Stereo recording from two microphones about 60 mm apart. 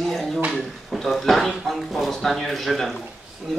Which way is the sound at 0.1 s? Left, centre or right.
Centre.